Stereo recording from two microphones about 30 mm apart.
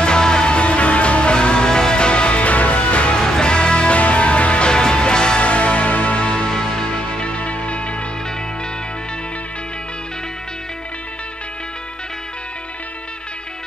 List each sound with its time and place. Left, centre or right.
0.0 s music: left
0.5 s music: left
3.2 s music: left
4.0 s music: left
4.6 s music: left
5.4 s music: left
6.5 s music: left
7.0 s music: left
7.3 s music: left